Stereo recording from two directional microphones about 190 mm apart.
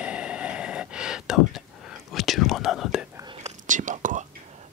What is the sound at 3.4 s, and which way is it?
Whispering, 40° right (ahead or behind).